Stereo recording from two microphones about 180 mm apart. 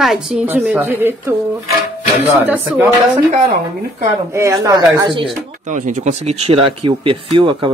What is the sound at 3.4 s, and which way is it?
Speech, 60° right (ahead or behind).